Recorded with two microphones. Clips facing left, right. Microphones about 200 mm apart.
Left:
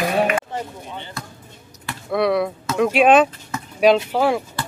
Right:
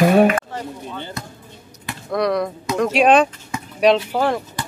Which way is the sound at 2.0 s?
5° left (ahead or behind).